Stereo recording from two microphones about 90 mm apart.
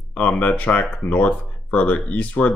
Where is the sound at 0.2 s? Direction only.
15° left (ahead or behind).